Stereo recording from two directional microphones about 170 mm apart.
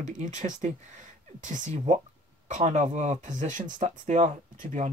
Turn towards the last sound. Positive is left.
turn(degrees=-45)  # may be behind; listen again after turning